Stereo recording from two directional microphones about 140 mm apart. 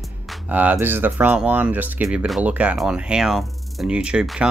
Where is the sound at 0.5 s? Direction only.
10° right (ahead or behind).